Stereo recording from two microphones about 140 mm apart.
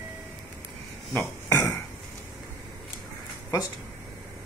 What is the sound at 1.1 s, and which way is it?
Burping, 15° left (ahead or behind).